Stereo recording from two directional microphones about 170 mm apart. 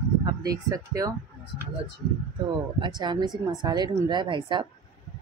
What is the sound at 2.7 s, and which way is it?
Speech, 25° right (ahead or behind).